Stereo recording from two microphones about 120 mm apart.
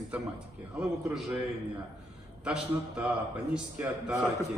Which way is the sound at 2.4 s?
10° right (ahead or behind).